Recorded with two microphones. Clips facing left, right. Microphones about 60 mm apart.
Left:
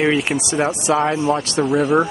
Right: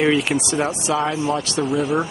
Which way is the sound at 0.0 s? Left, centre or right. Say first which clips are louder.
Even; centre.